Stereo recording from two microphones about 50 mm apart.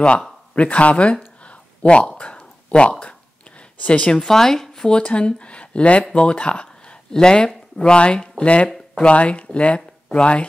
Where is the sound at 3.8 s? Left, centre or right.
Left.